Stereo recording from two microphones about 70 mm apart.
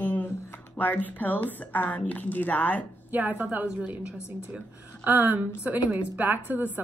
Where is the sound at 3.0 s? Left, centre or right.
Right.